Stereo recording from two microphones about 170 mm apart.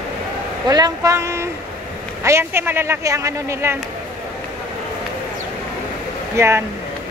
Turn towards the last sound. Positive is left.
turn(degrees=-15)  # may be behind; listen again after turning